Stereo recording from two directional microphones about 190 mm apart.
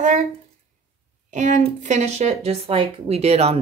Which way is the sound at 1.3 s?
40° right (ahead or behind).